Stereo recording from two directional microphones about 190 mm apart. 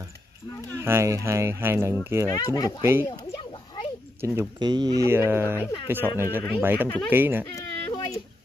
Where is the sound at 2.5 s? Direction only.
20° left (ahead or behind).